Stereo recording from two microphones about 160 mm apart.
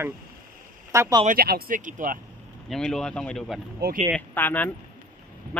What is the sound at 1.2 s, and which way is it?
Speech, 65° right (ahead or behind).